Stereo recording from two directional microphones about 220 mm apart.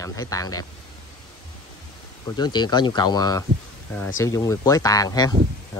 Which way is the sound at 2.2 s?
20° left (ahead or behind).